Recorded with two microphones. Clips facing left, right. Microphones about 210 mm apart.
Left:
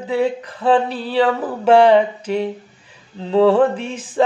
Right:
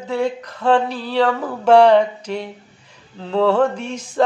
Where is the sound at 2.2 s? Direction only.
35° left (ahead or behind).